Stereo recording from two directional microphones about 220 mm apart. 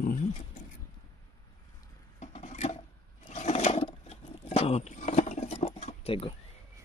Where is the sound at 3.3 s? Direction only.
30° left (ahead or behind).